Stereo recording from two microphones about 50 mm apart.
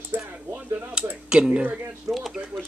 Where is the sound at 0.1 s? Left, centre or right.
Right.